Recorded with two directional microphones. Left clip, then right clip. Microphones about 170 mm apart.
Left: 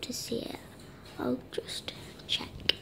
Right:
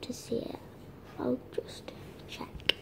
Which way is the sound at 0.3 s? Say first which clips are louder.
Right 1 dB; 5° left (ahead or behind).